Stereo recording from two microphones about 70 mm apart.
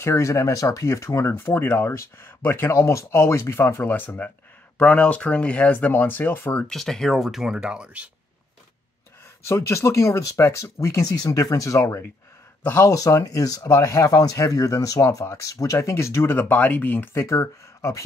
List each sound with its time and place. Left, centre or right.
0.0 s speech: left
6.7 s speech: centre
9.6 s speech: left
16.3 s speech: left
17.1 s speech: left